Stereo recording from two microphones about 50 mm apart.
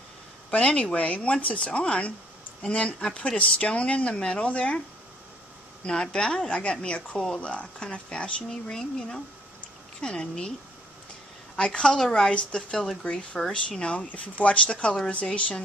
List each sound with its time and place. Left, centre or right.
0.5 s speech: left
5.9 s a woman's voice: centre
11.5 s a woman's voice: centre